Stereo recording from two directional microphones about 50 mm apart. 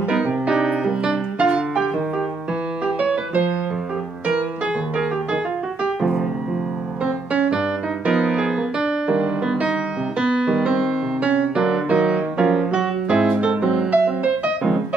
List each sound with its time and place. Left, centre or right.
0.1 s music: centre
3.0 s music: right
7.3 s music: right